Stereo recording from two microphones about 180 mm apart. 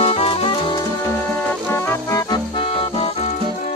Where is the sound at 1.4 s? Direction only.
10° left (ahead or behind); by 3.3 s 35° left (ahead or behind).